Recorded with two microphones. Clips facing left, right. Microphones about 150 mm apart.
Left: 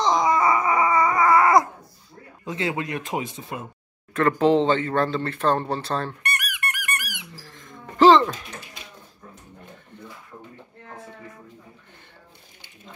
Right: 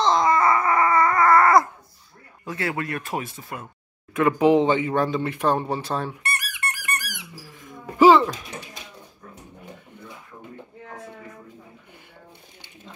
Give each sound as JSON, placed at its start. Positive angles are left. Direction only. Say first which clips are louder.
{"t": 0.0, "sound": "dog", "louder": "right 1 dB", "side_deg": 15}
{"t": 2.4, "sound": "speech", "louder": "left 1 dB", "side_deg": 20}
{"t": 4.1, "sound": "speech", "louder": "right 1 dB", "side_deg": -10}
{"t": 6.3, "sound": "squeak", "louder": "left 1 dB", "side_deg": -30}
{"t": 7.3, "sound": "a sound", "louder": "right 2 dB", "side_deg": -10}